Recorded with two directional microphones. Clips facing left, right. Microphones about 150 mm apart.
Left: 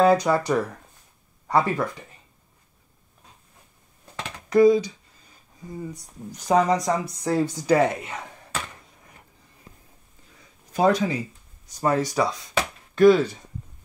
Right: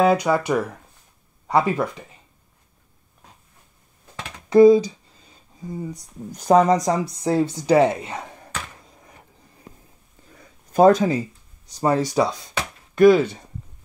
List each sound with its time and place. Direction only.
0.0 s a woman's voice: 10° right (ahead or behind)
4.5 s computer keyboard: 30° right (ahead or behind)
6.3 s speech: 50° right (ahead or behind)
7.2 s a woman's voice: 25° right (ahead or behind)
10.7 s speech: 45° right (ahead or behind)
11.8 s a woman's voice: 25° right (ahead or behind)
12.9 s speech: 10° right (ahead or behind)